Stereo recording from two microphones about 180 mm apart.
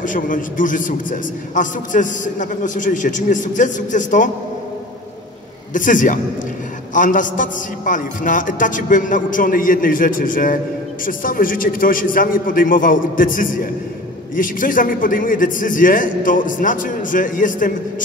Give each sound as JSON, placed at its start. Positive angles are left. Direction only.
{"t": 0.0, "sound": "a man's voice", "side_deg": 45}
{"t": 5.7, "sound": "a man's voice", "side_deg": 45}